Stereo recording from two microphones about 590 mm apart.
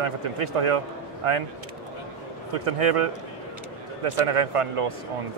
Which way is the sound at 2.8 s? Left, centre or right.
Right.